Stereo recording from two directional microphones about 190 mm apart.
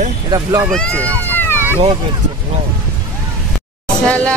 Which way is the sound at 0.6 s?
5° left (ahead or behind).